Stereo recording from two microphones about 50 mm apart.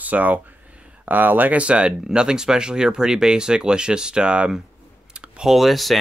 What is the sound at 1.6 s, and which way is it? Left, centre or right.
Speech, right.